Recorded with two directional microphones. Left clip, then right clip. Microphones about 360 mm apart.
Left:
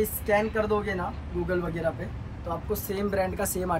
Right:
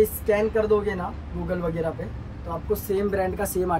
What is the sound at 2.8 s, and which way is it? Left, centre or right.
Speech, centre.